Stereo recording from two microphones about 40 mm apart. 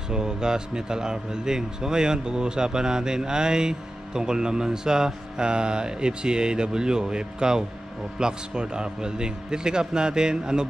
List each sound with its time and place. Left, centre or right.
0.1 s speech: centre